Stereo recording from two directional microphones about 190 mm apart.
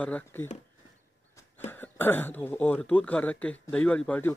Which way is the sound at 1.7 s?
10° left (ahead or behind).